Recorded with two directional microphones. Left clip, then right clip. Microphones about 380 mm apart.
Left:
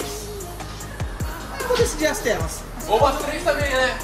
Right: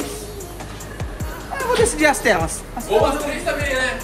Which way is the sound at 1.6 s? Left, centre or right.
Centre.